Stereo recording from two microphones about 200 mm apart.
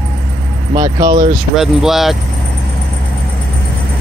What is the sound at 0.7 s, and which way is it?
Speech, 20° right (ahead or behind).